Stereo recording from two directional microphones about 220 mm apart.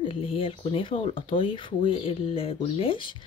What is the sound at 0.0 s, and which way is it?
Speech, 25° left (ahead or behind).